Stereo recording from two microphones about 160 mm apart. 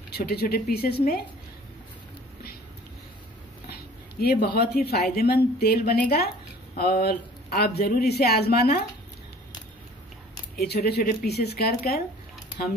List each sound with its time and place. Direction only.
0.1 s speech: 75° left (ahead or behind)
4.2 s speech: 80° left
10.5 s speech: 70° left (ahead or behind)